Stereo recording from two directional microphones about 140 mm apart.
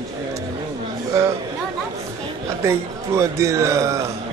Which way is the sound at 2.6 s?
20° right (ahead or behind).